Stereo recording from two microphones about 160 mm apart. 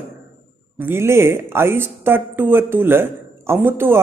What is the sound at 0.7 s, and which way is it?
A woman's voice, 15° right (ahead or behind).